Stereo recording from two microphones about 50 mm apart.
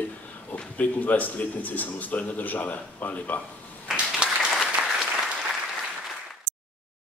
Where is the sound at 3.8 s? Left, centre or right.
Centre.